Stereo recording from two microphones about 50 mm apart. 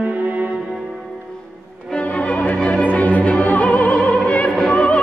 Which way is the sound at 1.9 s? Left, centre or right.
Left.